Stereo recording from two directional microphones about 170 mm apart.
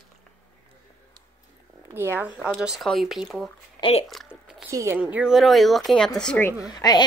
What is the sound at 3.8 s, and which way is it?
Speech, 35° left (ahead or behind).